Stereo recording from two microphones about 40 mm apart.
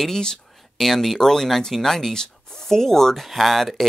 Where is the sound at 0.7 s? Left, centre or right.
Centre.